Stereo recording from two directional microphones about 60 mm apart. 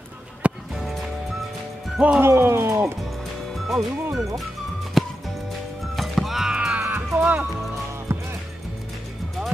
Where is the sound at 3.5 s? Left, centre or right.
Centre.